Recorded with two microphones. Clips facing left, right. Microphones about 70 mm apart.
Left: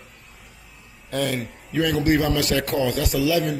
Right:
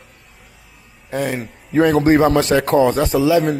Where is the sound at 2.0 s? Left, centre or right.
Right.